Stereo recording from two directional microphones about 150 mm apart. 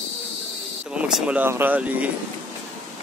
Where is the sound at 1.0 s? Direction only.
5° right (ahead or behind).